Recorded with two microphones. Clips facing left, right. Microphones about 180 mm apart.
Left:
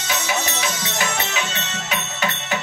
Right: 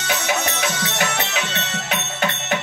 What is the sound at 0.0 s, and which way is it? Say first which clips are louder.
Music: right 2 dB; 60° right (ahead or behind).